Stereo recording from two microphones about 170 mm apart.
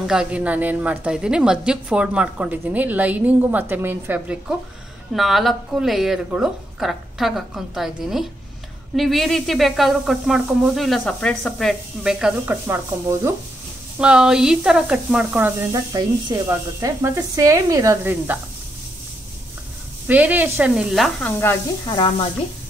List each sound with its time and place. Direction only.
0.0 s a woman's voice: 5° right (ahead or behind)
13.9 s a woman's voice: 5° right (ahead or behind)
20.1 s a woman's voice: 10° right (ahead or behind)
21.4 s speech: 15° left (ahead or behind)
21.9 s speech: 30° left (ahead or behind)